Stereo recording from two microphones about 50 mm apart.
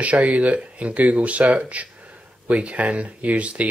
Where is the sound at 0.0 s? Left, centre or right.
Right.